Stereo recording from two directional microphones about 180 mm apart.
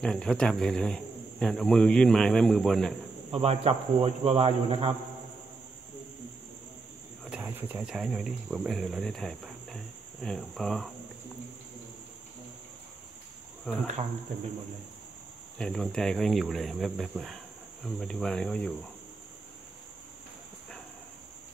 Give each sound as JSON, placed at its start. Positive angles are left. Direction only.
{"t": 0.0, "sound": "speech", "side_deg": 5}
{"t": 3.3, "sound": "speech", "side_deg": -35}
{"t": 7.2, "sound": "speech", "side_deg": -10}
{"t": 13.7, "sound": "speech", "side_deg": 5}
{"t": 15.5, "sound": "speech", "side_deg": 5}